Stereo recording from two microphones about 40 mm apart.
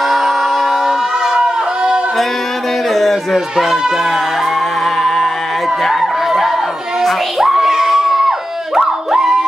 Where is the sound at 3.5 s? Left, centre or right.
Centre.